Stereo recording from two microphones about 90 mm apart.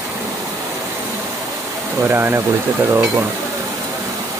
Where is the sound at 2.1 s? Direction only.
25° right (ahead or behind).